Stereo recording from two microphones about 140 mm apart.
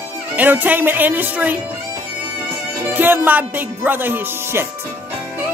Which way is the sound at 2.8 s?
15° right (ahead or behind).